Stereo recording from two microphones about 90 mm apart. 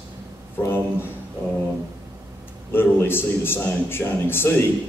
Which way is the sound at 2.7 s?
25° left (ahead or behind).